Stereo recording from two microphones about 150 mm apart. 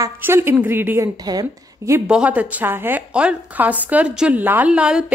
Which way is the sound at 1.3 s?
25° right (ahead or behind).